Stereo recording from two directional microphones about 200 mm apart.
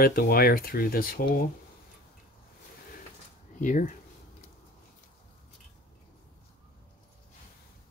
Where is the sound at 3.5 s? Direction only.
40° left (ahead or behind).